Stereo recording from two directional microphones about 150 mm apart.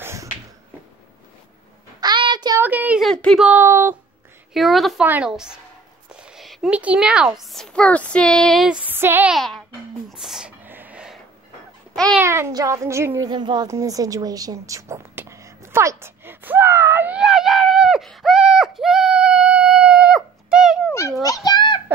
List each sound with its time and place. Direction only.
0.0 s finger snapping: 20° right (ahead or behind)
2.0 s child singing: 30° right (ahead or behind)
2.6 s a sound: 10° right (ahead or behind)
3.0 s speech: 5° left (ahead or behind)
3.4 s speech: 10° right (ahead or behind)
4.6 s speech: centre (ahead or behind)
8.8 s speech: 15° right (ahead or behind)
9.3 s speech: centre (ahead or behind)
10.0 s a sound: centre (ahead or behind)
11.9 s babbling: centre (ahead or behind)
12.2 s a child's voice: 15° right (ahead or behind)
13.3 s speech: 30° right (ahead or behind)
13.7 s a sound: 20° right (ahead or behind); by 20.9 s 5° right (ahead or behind)
21.5 s a sound: 30° left (ahead or behind)